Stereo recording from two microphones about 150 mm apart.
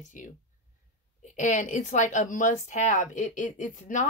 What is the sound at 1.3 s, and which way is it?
Speech, 55° left (ahead or behind).